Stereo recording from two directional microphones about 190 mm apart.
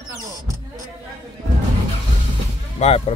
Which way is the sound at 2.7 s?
35° left (ahead or behind).